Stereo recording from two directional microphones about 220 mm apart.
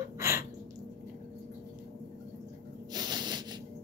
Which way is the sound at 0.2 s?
15° right (ahead or behind).